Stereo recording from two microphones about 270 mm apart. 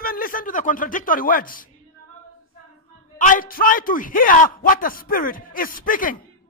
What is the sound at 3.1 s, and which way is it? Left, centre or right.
Speech, left.